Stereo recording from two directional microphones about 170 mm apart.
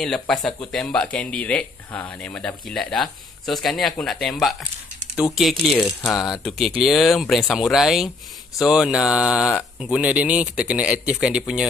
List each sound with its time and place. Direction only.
0.0 s speech: centre (ahead or behind)